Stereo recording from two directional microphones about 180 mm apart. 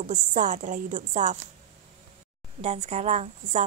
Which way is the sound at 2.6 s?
35° right (ahead or behind).